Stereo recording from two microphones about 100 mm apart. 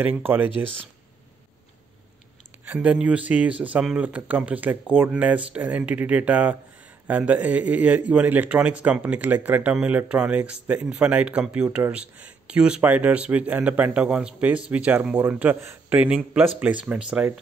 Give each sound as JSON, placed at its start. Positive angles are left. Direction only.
{"t": 0.0, "sound": "speech", "side_deg": -20}
{"t": 2.6, "sound": "a man's voice", "side_deg": -15}